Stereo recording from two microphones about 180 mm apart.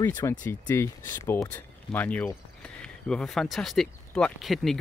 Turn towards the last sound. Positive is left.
turn(degrees=0)  # may be behind; listen again after turning